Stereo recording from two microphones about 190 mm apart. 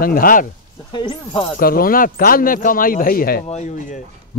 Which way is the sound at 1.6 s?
50° left (ahead or behind).